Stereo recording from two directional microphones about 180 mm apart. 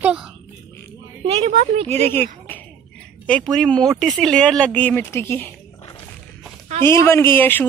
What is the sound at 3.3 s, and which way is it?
Speech, 5° left (ahead or behind).